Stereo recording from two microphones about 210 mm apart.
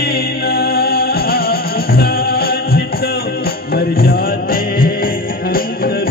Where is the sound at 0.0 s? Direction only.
45° left (ahead or behind).